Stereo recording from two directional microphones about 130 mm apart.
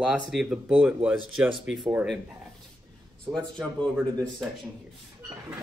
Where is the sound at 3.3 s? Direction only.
5° left (ahead or behind).